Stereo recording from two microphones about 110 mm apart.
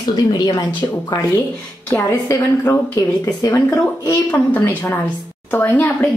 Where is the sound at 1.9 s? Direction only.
25° left (ahead or behind).